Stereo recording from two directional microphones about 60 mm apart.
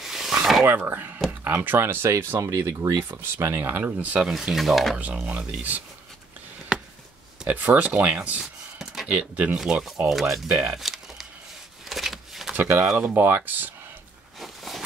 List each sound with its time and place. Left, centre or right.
0.0 s a sound: centre
0.7 s speech: right
2.5 s speech: right
3.5 s speech: right
3.8 s speech: right
4.2 s speech: centre
4.9 s speech: right
7.4 s speech: right
8.4 s a sound: centre
9.1 s speech: right
9.8 s speech: centre
10.5 s a sound: centre
12.5 s speech: right
14.4 s a sound: centre